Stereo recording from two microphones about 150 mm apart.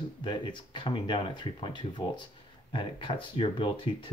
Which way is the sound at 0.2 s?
30° left (ahead or behind).